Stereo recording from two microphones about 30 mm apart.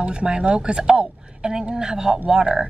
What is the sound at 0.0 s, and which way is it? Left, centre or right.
A woman's voice, right.